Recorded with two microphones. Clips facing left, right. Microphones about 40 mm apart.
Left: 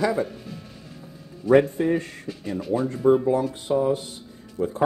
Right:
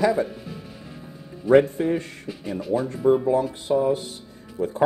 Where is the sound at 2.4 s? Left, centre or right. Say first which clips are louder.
Even; centre.